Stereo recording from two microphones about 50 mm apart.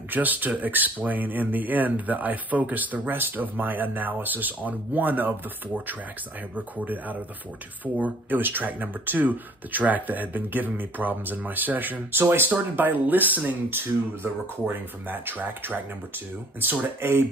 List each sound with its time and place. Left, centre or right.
0.1 s speech: right
6.5 s speech: right
13.7 s speech: right